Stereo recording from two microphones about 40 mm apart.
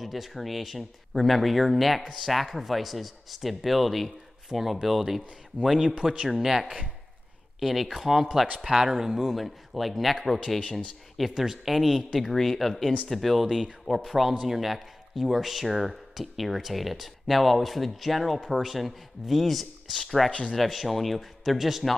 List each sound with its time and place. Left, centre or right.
0.0 s speech: centre
5.8 s speech: centre
6.2 s speech: centre
20.2 s speech: left
20.5 s speech: centre